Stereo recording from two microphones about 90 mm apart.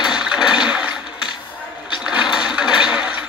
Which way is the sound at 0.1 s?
10° right (ahead or behind).